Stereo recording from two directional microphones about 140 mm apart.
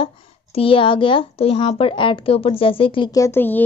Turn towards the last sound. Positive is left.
turn(degrees=15)  # may be behind; listen again after turning